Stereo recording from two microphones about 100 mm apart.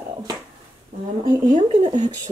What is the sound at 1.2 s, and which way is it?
Speech, 40° right (ahead or behind).